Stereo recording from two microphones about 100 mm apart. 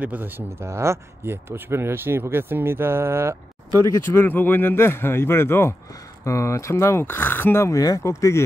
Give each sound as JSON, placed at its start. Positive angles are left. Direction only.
{"t": 0.0, "sound": "speech", "side_deg": -15}
{"t": 4.0, "sound": "speech", "side_deg": 20}